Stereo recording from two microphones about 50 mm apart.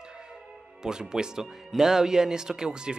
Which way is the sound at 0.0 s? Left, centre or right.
Centre.